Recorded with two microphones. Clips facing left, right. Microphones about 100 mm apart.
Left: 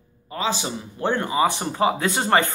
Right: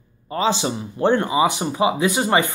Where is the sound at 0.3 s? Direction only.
30° right (ahead or behind).